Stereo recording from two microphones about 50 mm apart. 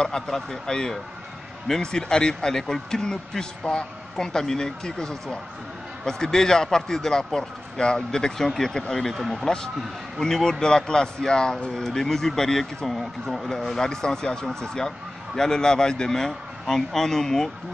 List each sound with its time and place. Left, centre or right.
0.0 s speech: centre
9.1 s speech: centre
9.8 s speech: centre